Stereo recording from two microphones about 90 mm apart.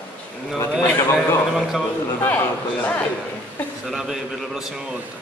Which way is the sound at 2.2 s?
20° left (ahead or behind).